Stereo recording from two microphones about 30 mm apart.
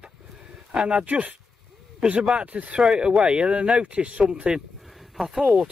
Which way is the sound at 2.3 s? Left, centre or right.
Right.